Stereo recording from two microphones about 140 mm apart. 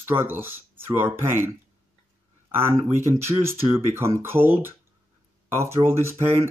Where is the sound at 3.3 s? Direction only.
15° right (ahead or behind).